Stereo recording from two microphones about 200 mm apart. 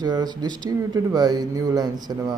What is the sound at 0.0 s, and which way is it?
Speech, 20° right (ahead or behind).